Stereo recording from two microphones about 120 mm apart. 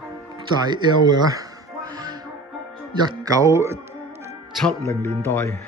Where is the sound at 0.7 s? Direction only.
35° right (ahead or behind).